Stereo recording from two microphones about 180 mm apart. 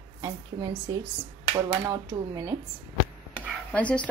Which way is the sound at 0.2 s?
20° right (ahead or behind).